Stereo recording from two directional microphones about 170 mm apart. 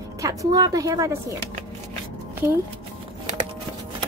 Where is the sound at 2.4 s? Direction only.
15° right (ahead or behind).